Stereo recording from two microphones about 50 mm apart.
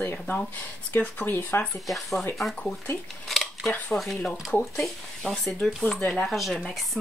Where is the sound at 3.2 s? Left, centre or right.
Centre.